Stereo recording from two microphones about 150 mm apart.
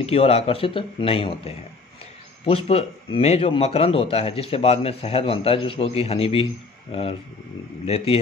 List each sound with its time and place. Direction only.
0.0 s a man's voice: 40° left (ahead or behind)